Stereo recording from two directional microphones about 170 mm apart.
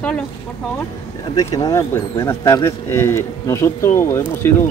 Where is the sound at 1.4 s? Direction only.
20° left (ahead or behind).